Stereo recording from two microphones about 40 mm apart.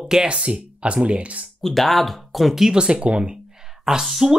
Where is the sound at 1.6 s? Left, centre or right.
Centre.